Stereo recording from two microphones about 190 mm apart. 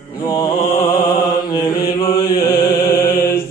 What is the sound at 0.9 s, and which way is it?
Mantra, 20° left (ahead or behind).